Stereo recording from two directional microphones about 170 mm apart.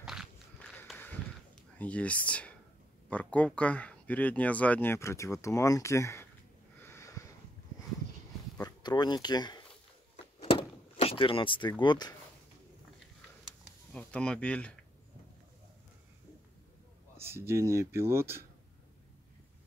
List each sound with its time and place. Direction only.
0.0 s biting: 5° right (ahead or behind)
0.9 s a sound: centre (ahead or behind)
1.8 s speech: 10° left (ahead or behind)
6.8 s sniff: 15° left (ahead or behind)
8.5 s speech: 25° left (ahead or behind)
10.1 s door: 35° left (ahead or behind)
11.8 s speech: 25° left (ahead or behind)
13.9 s speech: 5° left (ahead or behind)
17.2 s speech: 15° right (ahead or behind)